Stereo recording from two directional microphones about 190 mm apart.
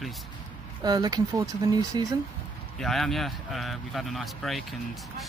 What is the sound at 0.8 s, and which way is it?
Speech, 20° right (ahead or behind).